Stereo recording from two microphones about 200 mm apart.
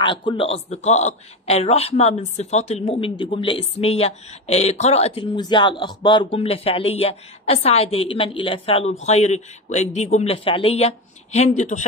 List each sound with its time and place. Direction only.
0.0 s a man's voice: 25° left (ahead or behind)